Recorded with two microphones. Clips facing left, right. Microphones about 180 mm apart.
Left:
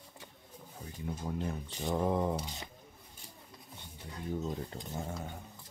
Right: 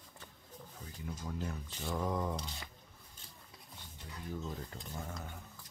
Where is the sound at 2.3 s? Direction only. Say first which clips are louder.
Left 4 dB; 20° left (ahead or behind).